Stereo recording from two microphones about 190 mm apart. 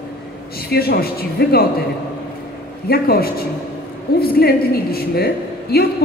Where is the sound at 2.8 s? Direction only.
55° left (ahead or behind).